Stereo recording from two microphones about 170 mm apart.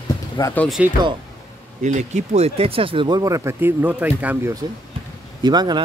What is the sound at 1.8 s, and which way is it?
Speech, 45° right (ahead or behind).